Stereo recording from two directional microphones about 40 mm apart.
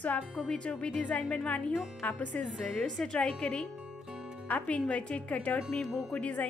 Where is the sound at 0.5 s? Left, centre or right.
Left.